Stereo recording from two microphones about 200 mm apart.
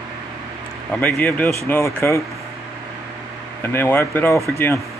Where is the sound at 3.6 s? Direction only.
10° left (ahead or behind).